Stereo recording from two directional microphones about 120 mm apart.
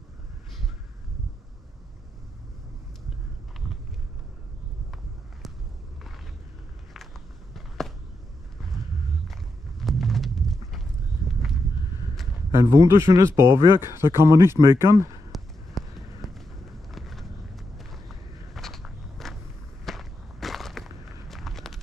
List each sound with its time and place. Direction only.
3.6 s vehicle: centre (ahead or behind)
7.5 s a sound: centre (ahead or behind)
9.3 s horse: centre (ahead or behind)
12.4 s speech: 25° right (ahead or behind)
15.3 s run: centre (ahead or behind)
16.9 s a sound: centre (ahead or behind)
17.7 s walk: centre (ahead or behind)